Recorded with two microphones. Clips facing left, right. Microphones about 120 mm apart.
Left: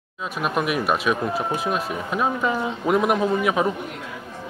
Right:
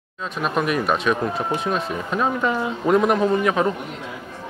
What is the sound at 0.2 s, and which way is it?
Speech, 5° left (ahead or behind).